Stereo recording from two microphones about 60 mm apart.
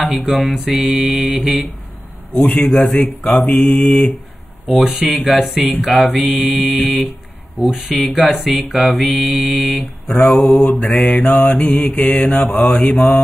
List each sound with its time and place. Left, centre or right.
0.0 s mantra: centre; by 12.4 s left
12.4 s mantra: centre